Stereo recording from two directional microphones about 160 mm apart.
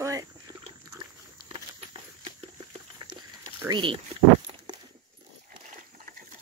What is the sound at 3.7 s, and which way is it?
Speech, 30° right (ahead or behind).